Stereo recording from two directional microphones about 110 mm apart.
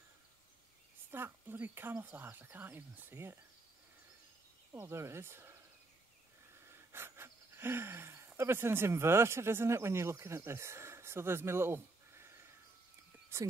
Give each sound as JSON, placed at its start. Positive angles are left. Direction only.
{"t": 1.1, "sound": "speech", "side_deg": -20}
{"t": 4.7, "sound": "speech", "side_deg": -20}
{"t": 6.9, "sound": "speech", "side_deg": -20}
{"t": 13.3, "sound": "speech", "side_deg": -25}